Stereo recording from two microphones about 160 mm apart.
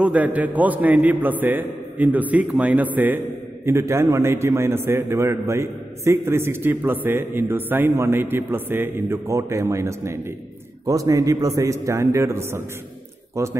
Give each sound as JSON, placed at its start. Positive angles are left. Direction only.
{"t": 0.0, "sound": "a man's voice", "side_deg": -10}